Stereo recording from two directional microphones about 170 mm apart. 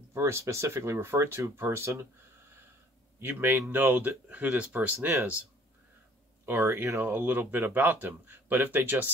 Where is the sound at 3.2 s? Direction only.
10° right (ahead or behind).